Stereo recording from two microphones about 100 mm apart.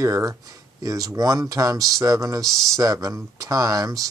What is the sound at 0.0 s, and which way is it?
Speech, 30° right (ahead or behind).